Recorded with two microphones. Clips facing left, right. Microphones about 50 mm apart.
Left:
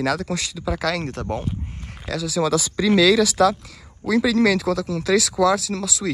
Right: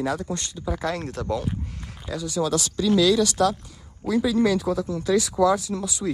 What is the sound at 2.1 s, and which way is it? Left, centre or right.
Speech, left.